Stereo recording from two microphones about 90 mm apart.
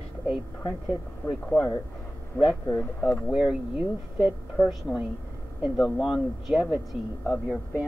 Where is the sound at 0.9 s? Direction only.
Centre (ahead or behind).